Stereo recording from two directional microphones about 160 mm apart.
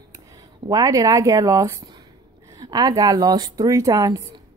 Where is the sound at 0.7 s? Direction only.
20° right (ahead or behind).